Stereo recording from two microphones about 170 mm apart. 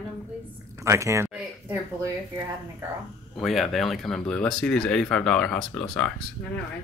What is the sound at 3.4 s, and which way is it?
Speech, centre (ahead or behind).